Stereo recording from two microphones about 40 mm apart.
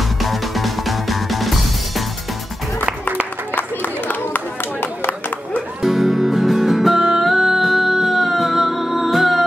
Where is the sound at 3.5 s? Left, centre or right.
Left.